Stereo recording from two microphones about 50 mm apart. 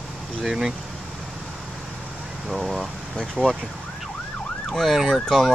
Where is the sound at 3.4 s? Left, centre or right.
Right.